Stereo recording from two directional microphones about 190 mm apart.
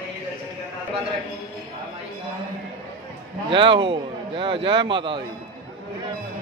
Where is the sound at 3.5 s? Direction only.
25° right (ahead or behind).